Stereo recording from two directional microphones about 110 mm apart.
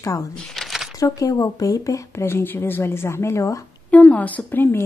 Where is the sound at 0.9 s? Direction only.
30° left (ahead or behind).